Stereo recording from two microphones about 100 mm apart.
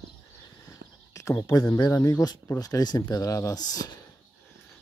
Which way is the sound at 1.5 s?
40° left (ahead or behind).